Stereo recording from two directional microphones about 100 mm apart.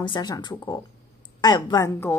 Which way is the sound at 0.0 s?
50° left (ahead or behind).